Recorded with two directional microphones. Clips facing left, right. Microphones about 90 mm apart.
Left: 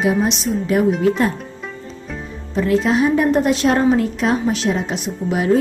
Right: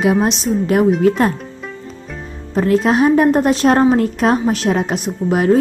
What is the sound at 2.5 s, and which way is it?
A woman's voice, 45° right (ahead or behind).